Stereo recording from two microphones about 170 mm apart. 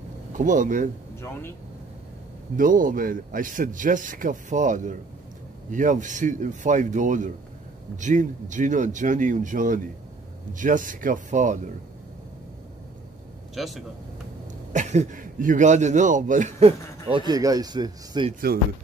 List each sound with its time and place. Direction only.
0.3 s speech: 50° right (ahead or behind)
2.5 s speech: 50° right (ahead or behind)
13.6 s speech: centre (ahead or behind)
14.7 s speech: 45° right (ahead or behind)
17.3 s speech: 20° right (ahead or behind)